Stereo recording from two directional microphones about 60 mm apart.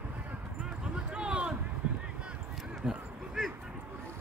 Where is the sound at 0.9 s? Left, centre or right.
Centre.